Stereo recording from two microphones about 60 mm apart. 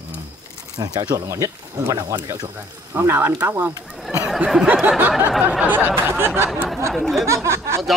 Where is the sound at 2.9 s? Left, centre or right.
Right.